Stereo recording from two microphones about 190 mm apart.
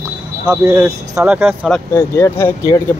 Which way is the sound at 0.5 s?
15° right (ahead or behind).